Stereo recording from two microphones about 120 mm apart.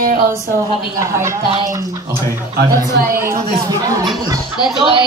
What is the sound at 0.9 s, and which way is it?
Speech, 25° right (ahead or behind).